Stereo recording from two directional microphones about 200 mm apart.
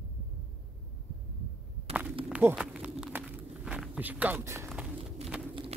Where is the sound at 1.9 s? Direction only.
5° right (ahead or behind).